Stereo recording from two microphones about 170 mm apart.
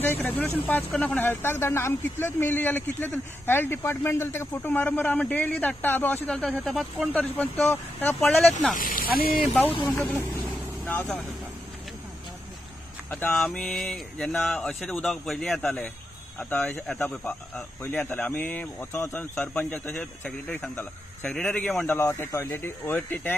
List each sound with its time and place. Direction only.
0.0 s speech: 10° left (ahead or behind)
8.2 s speech: centre (ahead or behind)
8.7 s speech: 55° left (ahead or behind)
9.7 s speech: 30° left (ahead or behind)
9.9 s vehicle: 15° left (ahead or behind)
13.1 s speech: 5° left (ahead or behind)
21.9 s speech: 15° left (ahead or behind)